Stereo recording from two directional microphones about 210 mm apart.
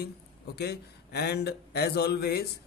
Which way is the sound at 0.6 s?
50° left (ahead or behind).